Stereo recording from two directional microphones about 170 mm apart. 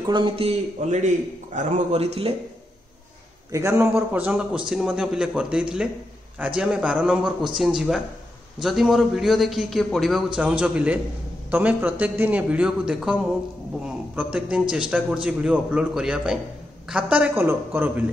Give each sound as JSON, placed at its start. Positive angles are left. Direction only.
{"t": 0.0, "sound": "a man's voice", "side_deg": -30}
{"t": 3.5, "sound": "a man's voice", "side_deg": -15}